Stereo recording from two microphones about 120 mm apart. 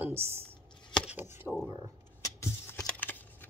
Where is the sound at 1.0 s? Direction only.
15° right (ahead or behind).